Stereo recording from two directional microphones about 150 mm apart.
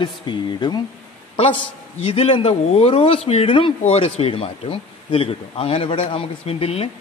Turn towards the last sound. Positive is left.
turn(degrees=40)  # may be behind; listen again after turning